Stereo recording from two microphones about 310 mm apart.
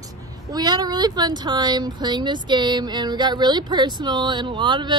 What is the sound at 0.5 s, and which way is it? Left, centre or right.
Speech, centre.